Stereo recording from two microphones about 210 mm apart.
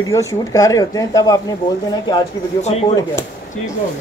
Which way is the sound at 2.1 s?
30° left (ahead or behind).